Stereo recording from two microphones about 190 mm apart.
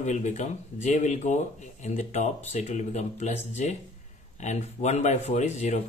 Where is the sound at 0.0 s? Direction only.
40° left (ahead or behind).